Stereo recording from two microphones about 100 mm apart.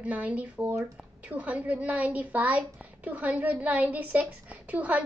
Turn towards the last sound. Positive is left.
turn(degrees=-15)  # may be behind; listen again after turning